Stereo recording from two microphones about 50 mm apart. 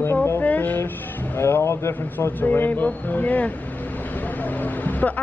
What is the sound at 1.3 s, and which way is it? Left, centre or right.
Speech, left.